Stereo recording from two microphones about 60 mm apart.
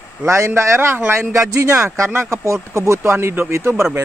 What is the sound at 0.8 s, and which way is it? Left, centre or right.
Speech, right.